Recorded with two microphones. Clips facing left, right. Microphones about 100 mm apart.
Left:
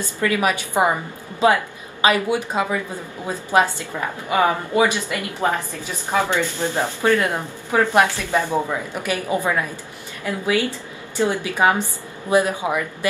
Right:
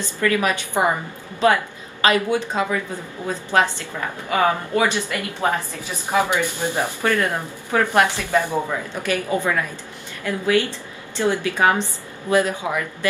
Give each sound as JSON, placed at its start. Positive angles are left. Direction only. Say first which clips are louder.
{"t": 0.2, "sound": "a woman's voice", "louder": "even", "side_deg": 20}
{"t": 1.4, "sound": "a sound", "louder": "left 1 dB", "side_deg": 15}
{"t": 2.2, "sound": "speech", "louder": "even", "side_deg": 15}
{"t": 6.0, "sound": "speech", "louder": "right 1 dB", "side_deg": -15}
{"t": 7.0, "sound": "a woman's voice", "louder": "left 4 dB", "side_deg": 20}